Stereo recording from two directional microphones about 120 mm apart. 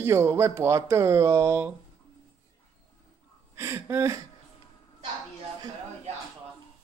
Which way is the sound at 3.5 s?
20° right (ahead or behind).